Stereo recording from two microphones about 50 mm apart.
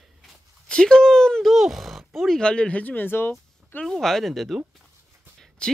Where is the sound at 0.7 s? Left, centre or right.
Centre.